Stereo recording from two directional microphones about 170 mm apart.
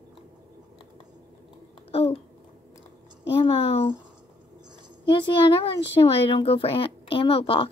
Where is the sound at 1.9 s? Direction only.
35° left (ahead or behind).